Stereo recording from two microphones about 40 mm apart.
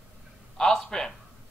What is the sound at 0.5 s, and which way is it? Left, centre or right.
Speech, centre.